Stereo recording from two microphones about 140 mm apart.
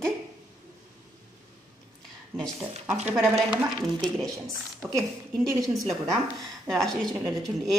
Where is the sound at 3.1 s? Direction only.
5° right (ahead or behind).